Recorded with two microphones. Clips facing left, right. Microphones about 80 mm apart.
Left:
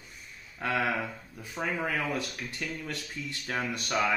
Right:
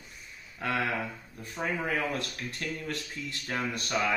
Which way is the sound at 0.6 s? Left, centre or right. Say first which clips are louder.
Left 1 dB; centre.